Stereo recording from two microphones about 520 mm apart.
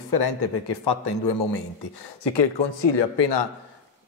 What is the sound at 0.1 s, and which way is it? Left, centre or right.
A man's voice, left.